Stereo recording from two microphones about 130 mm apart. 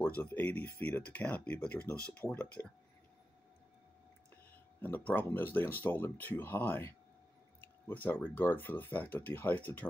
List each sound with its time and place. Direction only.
0.0 s speech: 10° left (ahead or behind)
4.8 s speech: 15° left (ahead or behind)